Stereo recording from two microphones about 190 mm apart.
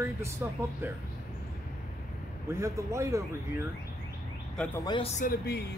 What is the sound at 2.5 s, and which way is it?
Speech, 15° right (ahead or behind).